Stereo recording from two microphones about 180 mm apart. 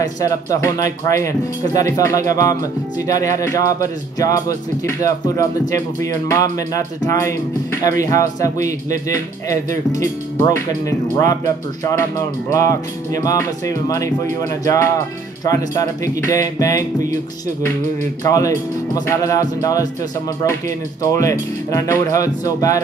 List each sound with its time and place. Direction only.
0.0 s speech: 20° left (ahead or behind)
18.2 s speech: 20° left (ahead or behind)